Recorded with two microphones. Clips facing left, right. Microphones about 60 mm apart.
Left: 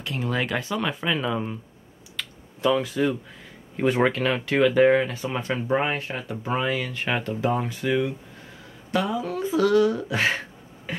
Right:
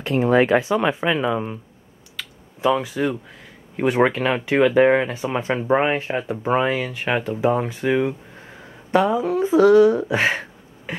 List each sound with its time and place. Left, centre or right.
0.2 s speech: right
2.2 s clicking: centre
2.6 s speech: centre
6.9 s speech: centre
10.9 s beatboxing: centre